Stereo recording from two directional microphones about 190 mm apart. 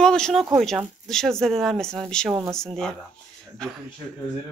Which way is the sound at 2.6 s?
5° left (ahead or behind).